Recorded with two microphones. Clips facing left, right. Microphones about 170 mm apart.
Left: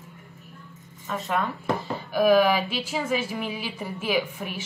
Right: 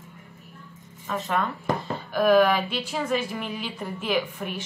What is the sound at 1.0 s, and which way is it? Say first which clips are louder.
A woman's voice: even; centre (ahead or behind).